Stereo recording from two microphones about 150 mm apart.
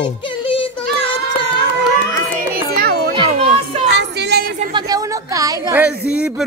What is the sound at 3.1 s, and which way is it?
Children playing, 35° right (ahead or behind).